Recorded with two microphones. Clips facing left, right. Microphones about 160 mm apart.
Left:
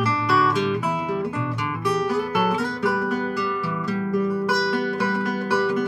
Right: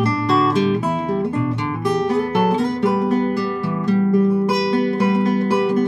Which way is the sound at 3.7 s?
30° right (ahead or behind).